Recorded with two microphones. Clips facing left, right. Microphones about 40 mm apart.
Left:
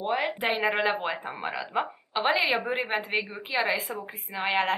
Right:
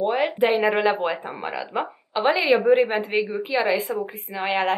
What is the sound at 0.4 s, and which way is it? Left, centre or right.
Speech, centre.